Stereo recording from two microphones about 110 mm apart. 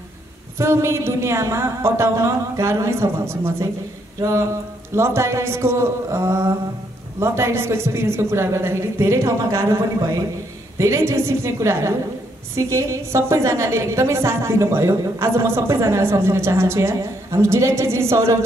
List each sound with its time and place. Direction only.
0.6 s a woman's voice: 25° right (ahead or behind)